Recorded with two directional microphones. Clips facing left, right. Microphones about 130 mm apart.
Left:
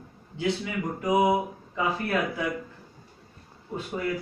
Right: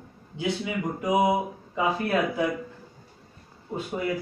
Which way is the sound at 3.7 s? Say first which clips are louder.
Right 1 dB; 15° right (ahead or behind).